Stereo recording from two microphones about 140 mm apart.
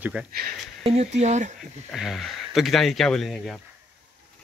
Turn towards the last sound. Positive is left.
turn(degrees=0)  # may be behind; listen again after turning